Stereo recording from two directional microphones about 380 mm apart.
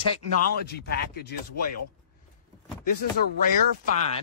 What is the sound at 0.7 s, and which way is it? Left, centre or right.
Speech, left.